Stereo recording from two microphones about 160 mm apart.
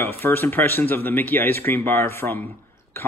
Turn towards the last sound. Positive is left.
turn(degrees=15)  # may be behind; listen again after turning